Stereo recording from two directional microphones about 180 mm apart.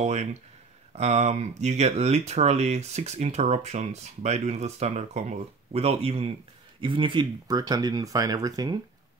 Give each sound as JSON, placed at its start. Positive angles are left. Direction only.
{"t": 0.0, "sound": "speech", "side_deg": -40}